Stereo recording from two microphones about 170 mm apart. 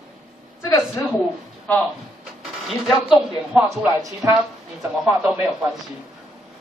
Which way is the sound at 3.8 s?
15° right (ahead or behind).